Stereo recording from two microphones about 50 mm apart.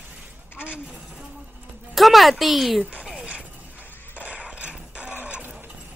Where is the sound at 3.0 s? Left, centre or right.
Centre.